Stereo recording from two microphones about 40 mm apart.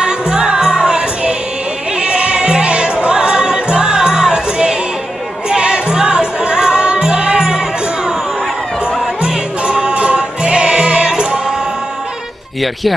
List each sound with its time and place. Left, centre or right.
0.0 s music: right
9.2 s music: right